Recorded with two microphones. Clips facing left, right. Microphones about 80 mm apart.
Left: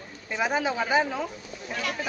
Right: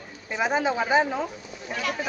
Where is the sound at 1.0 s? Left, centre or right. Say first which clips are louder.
Right 2 dB; right.